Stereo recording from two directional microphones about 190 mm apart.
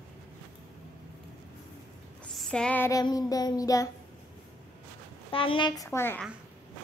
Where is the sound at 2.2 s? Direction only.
5° left (ahead or behind); by 3.9 s 20° left (ahead or behind).